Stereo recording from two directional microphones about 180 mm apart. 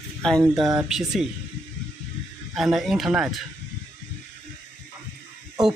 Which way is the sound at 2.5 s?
Centre (ahead or behind).